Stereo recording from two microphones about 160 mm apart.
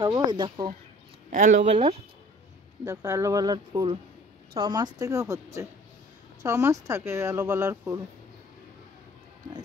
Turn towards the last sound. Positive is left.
turn(degrees=-15)  # may be behind; listen again after turning